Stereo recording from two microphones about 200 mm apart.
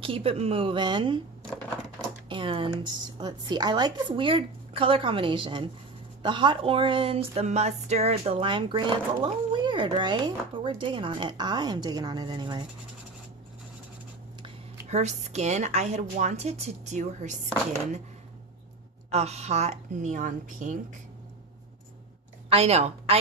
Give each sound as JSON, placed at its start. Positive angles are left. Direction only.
{"t": 0.0, "sound": "speech", "side_deg": -30}
{"t": 2.2, "sound": "speech", "side_deg": -25}
{"t": 14.4, "sound": "speech", "side_deg": -35}
{"t": 19.0, "sound": "speech", "side_deg": -30}
{"t": 22.5, "sound": "a woman's voice", "side_deg": -30}